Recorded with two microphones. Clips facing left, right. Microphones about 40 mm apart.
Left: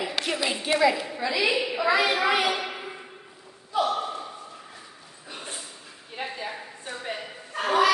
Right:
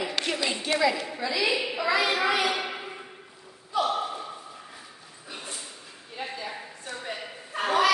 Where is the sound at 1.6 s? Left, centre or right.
Centre.